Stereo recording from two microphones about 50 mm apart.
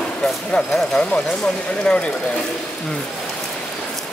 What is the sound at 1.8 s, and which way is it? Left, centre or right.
Speech, left.